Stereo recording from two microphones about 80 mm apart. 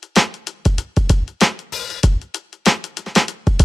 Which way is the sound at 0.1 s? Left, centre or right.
Centre.